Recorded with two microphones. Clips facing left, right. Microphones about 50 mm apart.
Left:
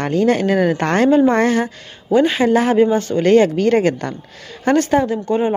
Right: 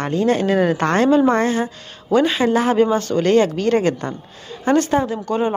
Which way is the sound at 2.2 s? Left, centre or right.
Left.